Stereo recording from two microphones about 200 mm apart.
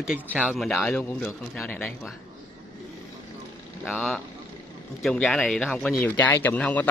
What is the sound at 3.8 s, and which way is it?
A man's voice, 5° left (ahead or behind).